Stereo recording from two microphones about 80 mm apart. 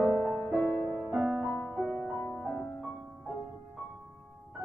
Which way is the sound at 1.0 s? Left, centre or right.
Centre.